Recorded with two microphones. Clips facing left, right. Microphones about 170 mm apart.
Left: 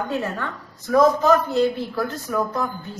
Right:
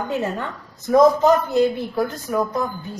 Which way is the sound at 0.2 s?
20° right (ahead or behind).